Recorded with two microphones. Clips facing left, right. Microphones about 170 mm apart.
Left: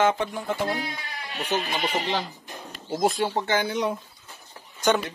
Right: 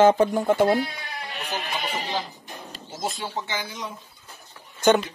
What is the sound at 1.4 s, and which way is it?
Speech, 70° left (ahead or behind).